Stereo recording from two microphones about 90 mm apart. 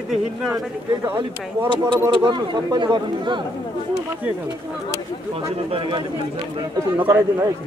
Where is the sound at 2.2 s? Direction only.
55° right (ahead or behind).